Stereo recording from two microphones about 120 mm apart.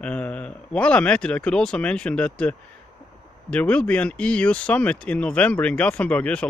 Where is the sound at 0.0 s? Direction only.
10° left (ahead or behind).